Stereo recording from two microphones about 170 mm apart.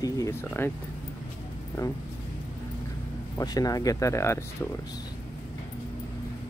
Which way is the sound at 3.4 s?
20° left (ahead or behind).